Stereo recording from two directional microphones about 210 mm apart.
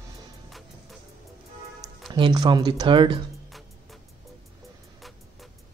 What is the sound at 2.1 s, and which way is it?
Speech, 20° right (ahead or behind).